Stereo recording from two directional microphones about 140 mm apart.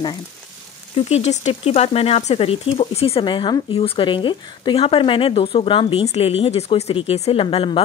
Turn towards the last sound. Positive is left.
turn(degrees=40)  # may be behind; listen again after turning